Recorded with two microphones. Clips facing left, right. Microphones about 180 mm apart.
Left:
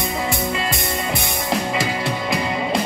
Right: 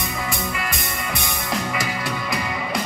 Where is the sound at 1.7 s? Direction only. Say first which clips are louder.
Left 4 dB; 25° left (ahead or behind).